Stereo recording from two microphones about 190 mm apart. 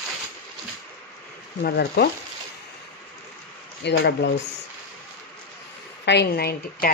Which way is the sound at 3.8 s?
65° left (ahead or behind).